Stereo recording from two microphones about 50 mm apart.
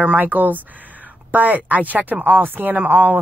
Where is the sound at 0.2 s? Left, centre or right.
Right.